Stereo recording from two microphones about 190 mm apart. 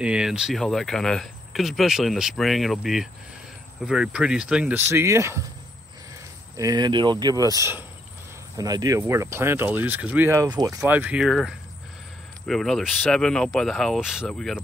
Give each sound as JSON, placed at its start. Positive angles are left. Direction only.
{"t": 0.0, "sound": "speech", "side_deg": -5}
{"t": 6.5, "sound": "speech", "side_deg": -20}
{"t": 10.8, "sound": "speech", "side_deg": -10}